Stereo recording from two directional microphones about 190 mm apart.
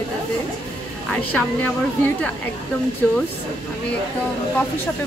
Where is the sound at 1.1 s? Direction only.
5° left (ahead or behind).